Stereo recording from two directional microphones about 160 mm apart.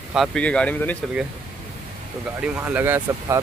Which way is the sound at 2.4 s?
10° right (ahead or behind).